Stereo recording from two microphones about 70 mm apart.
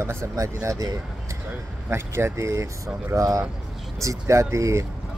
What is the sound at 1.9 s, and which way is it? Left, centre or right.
Speech, right.